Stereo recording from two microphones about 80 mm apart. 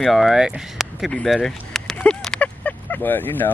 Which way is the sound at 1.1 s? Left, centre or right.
Centre.